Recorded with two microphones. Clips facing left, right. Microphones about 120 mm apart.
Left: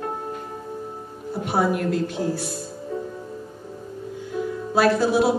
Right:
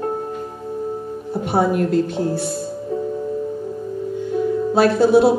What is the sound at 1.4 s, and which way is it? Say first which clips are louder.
A woman's voice: right 4 dB; 25° right (ahead or behind).